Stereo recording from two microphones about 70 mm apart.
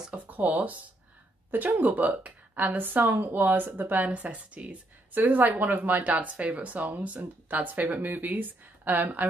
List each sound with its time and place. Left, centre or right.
0.1 s a woman's voice: right